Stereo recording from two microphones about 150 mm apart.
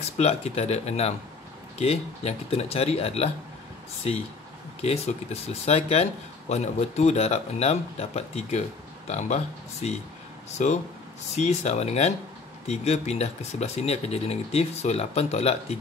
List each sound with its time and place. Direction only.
0.2 s speech: 45° left (ahead or behind)
4.8 s speech: 45° left (ahead or behind)